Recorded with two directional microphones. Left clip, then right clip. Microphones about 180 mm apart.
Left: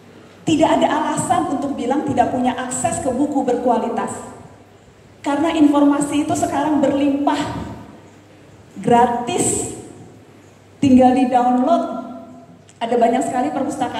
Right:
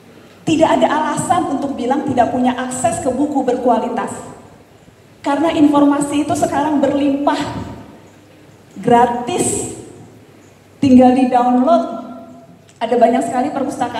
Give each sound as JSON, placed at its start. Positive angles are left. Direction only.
{"t": 0.5, "sound": "a woman's voice", "side_deg": -35}
{"t": 5.2, "sound": "a woman's voice", "side_deg": -35}
{"t": 8.8, "sound": "a woman's voice", "side_deg": -35}
{"t": 10.8, "sound": "a woman's voice", "side_deg": -35}